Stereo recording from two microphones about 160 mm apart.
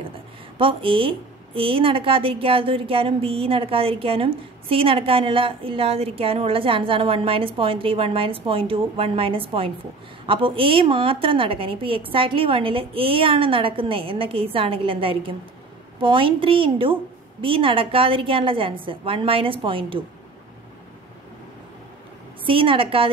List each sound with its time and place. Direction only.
0.6 s a woman's voice: 35° right (ahead or behind)
22.5 s a woman's voice: 35° right (ahead or behind)